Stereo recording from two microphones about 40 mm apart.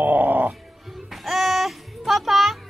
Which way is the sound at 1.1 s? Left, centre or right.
Centre.